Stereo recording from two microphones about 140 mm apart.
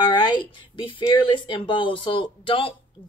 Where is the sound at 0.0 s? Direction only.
35° left (ahead or behind).